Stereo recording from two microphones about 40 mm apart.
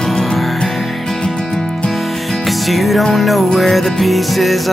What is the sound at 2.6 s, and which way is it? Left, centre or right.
Music, centre.